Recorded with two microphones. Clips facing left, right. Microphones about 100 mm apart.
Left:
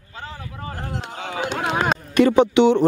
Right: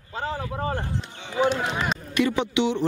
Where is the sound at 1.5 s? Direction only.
65° left (ahead or behind).